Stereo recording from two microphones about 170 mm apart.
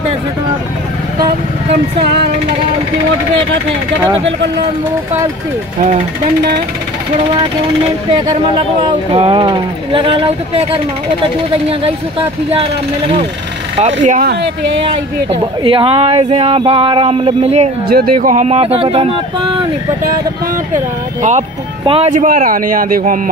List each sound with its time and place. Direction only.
2.0 s music: 75° right (ahead or behind)
9.1 s speech: 30° right (ahead or behind)
14.0 s a man's voice: 50° right (ahead or behind)
15.2 s speech: 30° right (ahead or behind)
17.8 s speech: 60° right (ahead or behind); by 19.1 s 35° right (ahead or behind)
21.2 s speech: 45° right (ahead or behind)
22.1 s a man's voice: 50° right (ahead or behind)